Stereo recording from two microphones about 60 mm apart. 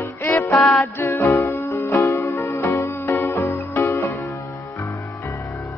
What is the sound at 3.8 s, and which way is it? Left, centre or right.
Music, left.